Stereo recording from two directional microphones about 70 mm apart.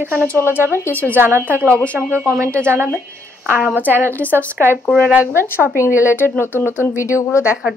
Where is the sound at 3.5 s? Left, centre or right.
Right.